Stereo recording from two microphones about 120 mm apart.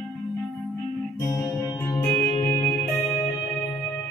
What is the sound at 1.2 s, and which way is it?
Music, 30° left (ahead or behind).